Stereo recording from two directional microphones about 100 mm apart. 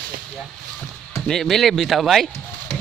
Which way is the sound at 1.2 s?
5° left (ahead or behind).